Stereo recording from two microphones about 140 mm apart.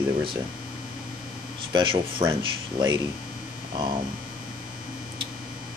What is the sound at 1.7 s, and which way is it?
Speech, 30° right (ahead or behind).